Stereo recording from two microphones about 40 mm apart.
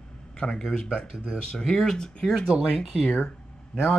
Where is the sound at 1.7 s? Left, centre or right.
Centre.